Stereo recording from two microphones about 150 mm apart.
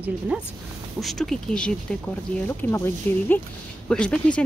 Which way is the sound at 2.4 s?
15° left (ahead or behind).